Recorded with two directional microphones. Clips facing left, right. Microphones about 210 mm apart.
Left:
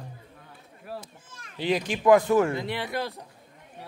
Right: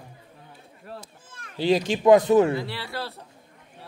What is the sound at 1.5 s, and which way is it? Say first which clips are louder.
A man's voice: right 5 dB; 30° right (ahead or behind).